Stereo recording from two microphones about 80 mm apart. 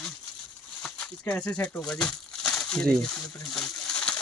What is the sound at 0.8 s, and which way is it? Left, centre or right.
Speech, centre.